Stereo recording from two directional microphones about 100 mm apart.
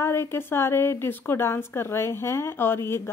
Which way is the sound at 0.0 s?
25° left (ahead or behind).